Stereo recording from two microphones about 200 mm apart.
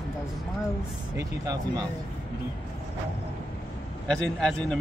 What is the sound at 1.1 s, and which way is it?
Speech, 15° right (ahead or behind).